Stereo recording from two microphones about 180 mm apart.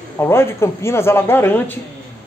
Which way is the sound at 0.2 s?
15° left (ahead or behind).